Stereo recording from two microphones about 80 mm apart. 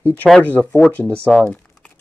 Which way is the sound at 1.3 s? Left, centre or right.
Centre.